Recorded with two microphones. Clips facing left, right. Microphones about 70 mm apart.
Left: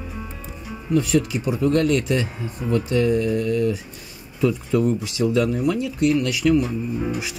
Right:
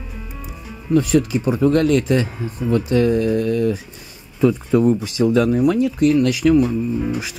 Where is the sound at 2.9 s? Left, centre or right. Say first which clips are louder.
Right 3 dB; right.